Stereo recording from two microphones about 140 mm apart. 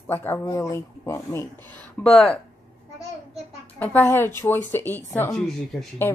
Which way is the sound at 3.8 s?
15° left (ahead or behind).